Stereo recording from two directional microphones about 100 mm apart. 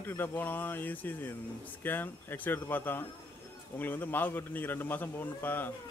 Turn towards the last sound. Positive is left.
turn(degrees=20)  # may be behind; listen again after turning